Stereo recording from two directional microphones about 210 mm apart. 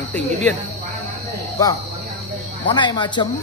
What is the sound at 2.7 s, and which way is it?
Speech, 20° left (ahead or behind).